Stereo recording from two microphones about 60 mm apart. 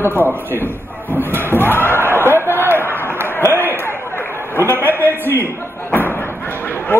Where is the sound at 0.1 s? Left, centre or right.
Left.